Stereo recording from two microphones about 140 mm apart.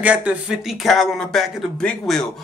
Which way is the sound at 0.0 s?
10° right (ahead or behind).